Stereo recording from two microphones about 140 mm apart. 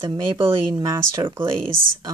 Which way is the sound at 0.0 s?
35° right (ahead or behind).